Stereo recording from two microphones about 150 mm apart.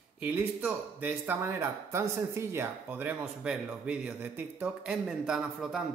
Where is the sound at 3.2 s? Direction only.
5° right (ahead or behind).